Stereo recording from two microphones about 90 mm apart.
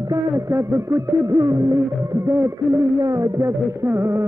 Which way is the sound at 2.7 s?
40° right (ahead or behind).